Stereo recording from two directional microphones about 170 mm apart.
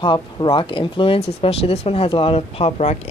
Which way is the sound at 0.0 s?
30° left (ahead or behind).